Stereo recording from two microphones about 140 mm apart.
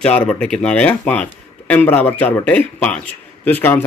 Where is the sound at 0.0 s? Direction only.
10° left (ahead or behind).